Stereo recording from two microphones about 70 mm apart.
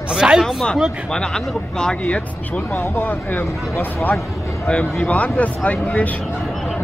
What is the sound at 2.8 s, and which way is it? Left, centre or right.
Speech, left.